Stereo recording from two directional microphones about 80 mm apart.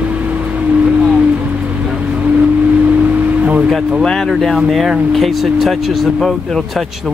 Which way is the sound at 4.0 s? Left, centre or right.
Centre.